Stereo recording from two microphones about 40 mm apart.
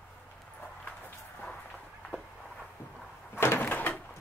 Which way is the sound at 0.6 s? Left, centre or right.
Left.